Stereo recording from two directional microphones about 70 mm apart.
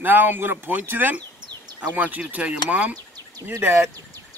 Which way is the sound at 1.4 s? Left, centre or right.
Right.